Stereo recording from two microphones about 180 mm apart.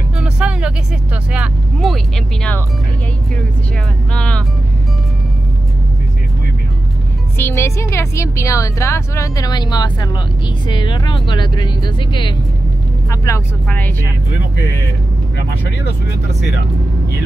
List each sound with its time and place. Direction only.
0.2 s music: 5° right (ahead or behind)
1.3 s speech: centre (ahead or behind)
4.1 s speech: 5° left (ahead or behind)
7.3 s a woman's voice: 15° left (ahead or behind)